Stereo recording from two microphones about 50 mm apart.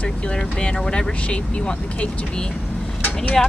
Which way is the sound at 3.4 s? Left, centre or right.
Centre.